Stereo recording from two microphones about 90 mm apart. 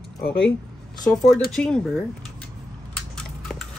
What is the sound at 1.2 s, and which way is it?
Speech, 5° left (ahead or behind).